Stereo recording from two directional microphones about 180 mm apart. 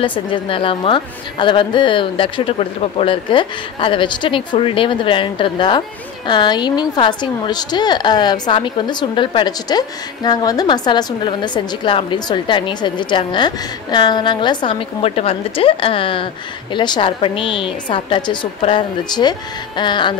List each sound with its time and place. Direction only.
0.0 s a woman's voice: 25° left (ahead or behind)